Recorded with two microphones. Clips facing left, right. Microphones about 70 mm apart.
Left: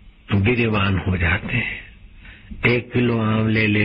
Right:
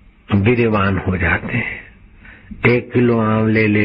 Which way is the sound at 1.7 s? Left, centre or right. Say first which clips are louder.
Right 3 dB; right.